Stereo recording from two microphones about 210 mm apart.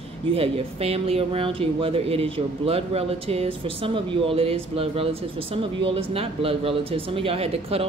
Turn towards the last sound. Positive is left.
turn(degrees=-30)  # may be behind; listen again after turning